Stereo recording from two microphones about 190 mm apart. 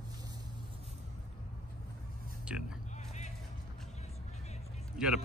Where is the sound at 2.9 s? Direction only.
40° left (ahead or behind).